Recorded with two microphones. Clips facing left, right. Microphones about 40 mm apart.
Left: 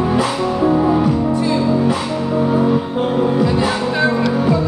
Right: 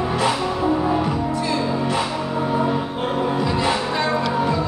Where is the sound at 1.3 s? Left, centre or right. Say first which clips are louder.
Left 6 dB; centre.